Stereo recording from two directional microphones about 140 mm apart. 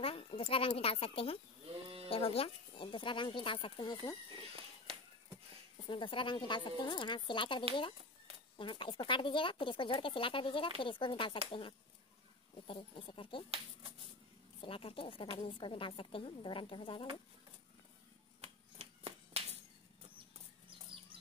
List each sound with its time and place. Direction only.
0.0 s speech: 40° left (ahead or behind)
1.7 s sheep: 45° right (ahead or behind)
2.0 s a woman's voice: 45° left (ahead or behind)
4.9 s a sound: 45° right (ahead or behind)
5.9 s a woman's voice: 35° left (ahead or behind)
12.6 s a woman's voice: 35° left (ahead or behind)
14.6 s a woman's voice: 40° left (ahead or behind)
18.4 s a sound: 45° right (ahead or behind)